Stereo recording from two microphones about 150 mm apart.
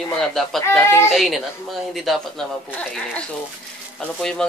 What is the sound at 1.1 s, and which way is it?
Speech, centre (ahead or behind).